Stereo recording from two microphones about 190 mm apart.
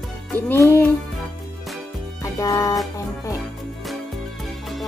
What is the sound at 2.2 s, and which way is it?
Music, 15° left (ahead or behind).